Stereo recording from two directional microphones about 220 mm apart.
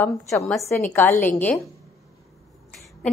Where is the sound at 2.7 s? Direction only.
Centre (ahead or behind).